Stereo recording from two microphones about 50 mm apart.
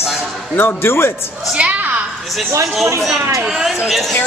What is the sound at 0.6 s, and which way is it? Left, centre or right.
Speech, left.